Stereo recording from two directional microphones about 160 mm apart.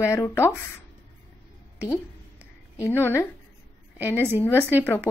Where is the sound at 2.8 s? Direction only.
15° left (ahead or behind).